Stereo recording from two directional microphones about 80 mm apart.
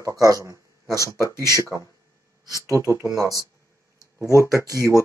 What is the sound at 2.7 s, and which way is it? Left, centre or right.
Speech, right.